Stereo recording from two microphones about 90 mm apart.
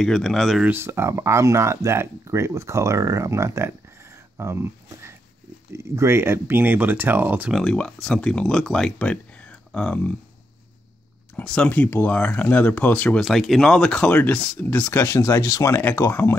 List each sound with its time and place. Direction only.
0.0 s speech: 5° left (ahead or behind)
0.7 s speech: 25° right (ahead or behind)
7.5 s speech: 10° left (ahead or behind)
11.3 s speech: 15° left (ahead or behind)
13.2 s speech: centre (ahead or behind); by 15.8 s 35° left (ahead or behind)
15.8 s speech: 25° left (ahead or behind)